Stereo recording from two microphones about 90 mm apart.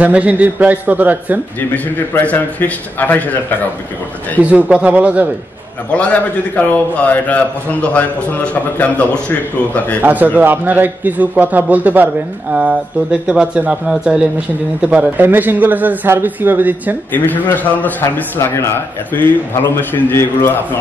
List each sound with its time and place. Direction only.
0.0 s a man's voice: 15° right (ahead or behind)
2.0 s a man's voice: 20° left (ahead or behind)
4.4 s a man's voice: 15° right (ahead or behind)
5.9 s a man's voice: 15° left (ahead or behind)
10.0 s a man's voice: 20° right (ahead or behind)
17.1 s a man's voice: 20° left (ahead or behind)